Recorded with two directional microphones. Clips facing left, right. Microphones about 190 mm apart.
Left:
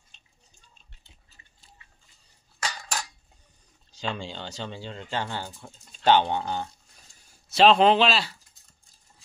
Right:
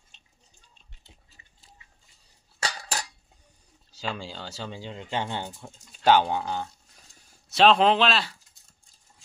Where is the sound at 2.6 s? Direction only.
35° right (ahead or behind).